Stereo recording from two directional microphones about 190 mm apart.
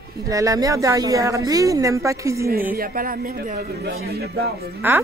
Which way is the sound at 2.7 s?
50° right (ahead or behind).